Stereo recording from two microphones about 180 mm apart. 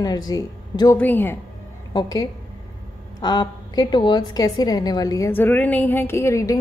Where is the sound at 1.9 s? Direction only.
20° left (ahead or behind).